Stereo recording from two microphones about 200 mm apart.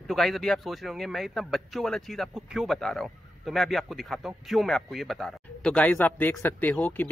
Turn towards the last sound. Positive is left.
turn(degrees=10)  # may be behind; listen again after turning